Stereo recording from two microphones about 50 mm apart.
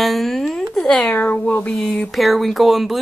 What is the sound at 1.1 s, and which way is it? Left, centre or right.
Speech, left.